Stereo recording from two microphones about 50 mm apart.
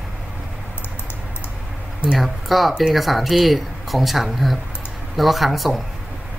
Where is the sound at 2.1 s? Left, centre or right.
Centre.